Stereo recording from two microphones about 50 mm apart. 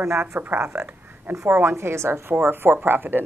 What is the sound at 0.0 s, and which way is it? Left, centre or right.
Speech, right.